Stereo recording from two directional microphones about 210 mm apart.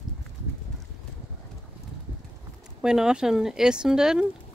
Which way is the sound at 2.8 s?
5° right (ahead or behind).